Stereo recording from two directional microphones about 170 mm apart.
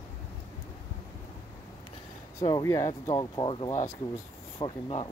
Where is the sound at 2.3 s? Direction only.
20° left (ahead or behind).